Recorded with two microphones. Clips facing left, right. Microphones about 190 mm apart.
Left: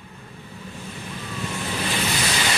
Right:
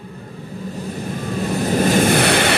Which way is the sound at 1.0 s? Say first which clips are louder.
Right 9 dB; 45° right (ahead or behind).